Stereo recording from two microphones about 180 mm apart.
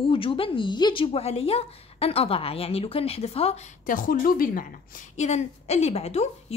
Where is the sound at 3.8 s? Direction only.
50° left (ahead or behind).